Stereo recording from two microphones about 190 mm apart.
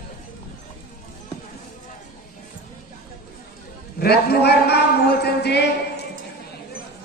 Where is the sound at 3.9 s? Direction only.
55° left (ahead or behind).